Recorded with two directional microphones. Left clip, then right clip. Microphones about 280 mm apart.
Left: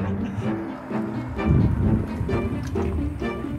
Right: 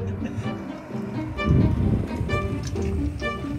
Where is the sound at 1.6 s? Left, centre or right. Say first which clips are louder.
Even; centre.